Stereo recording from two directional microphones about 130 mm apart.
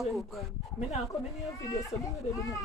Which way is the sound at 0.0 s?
Centre (ahead or behind).